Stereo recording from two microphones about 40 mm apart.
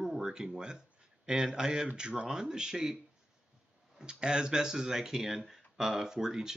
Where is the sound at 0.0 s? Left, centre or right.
Centre.